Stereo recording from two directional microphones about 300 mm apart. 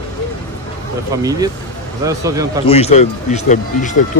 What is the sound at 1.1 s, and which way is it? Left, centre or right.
Speech, centre.